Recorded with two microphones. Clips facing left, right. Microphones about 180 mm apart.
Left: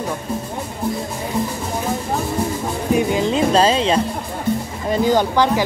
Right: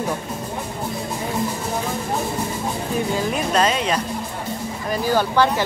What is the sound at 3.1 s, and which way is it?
Music, 20° left (ahead or behind).